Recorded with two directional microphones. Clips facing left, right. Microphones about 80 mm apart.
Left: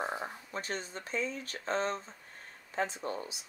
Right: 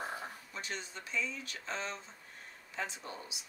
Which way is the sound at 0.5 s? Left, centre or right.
Left.